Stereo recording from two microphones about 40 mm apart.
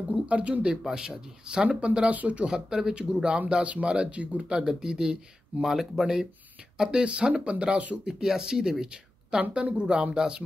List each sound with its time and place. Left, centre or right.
0.1 s speech: right
0.8 s speech: centre
2.5 s speech: centre
5.7 s speech: centre
6.8 s speech: right
8.0 s speech: centre